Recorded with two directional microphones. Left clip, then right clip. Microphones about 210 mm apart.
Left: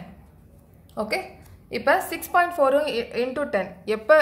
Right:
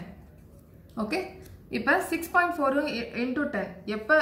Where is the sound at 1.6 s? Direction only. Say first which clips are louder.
Left 4 dB; 55° left (ahead or behind).